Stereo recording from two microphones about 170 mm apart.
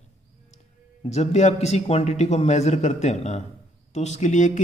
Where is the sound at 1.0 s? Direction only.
40° left (ahead or behind).